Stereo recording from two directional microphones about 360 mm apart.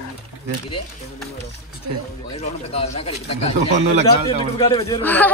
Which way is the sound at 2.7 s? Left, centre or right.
Centre.